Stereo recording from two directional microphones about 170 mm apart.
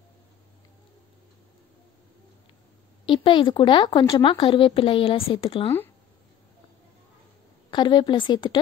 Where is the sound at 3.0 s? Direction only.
30° left (ahead or behind).